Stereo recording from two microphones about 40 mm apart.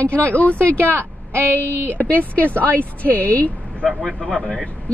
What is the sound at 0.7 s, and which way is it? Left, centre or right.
A woman's voice, right.